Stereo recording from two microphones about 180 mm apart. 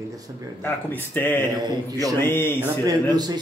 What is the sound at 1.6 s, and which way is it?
Speech, 20° right (ahead or behind).